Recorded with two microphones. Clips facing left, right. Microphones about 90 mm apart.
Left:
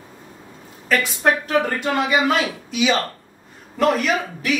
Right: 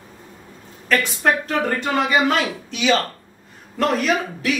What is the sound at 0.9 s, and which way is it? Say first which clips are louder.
A woman's voice: even; 5° left (ahead or behind).